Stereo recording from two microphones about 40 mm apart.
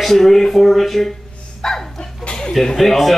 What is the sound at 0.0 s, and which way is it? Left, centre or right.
A man's voice, centre.